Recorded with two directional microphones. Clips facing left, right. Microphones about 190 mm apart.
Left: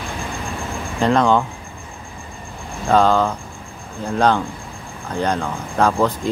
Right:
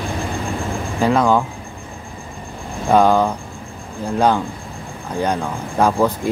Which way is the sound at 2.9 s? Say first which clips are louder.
Right 2 dB; 15° right (ahead or behind).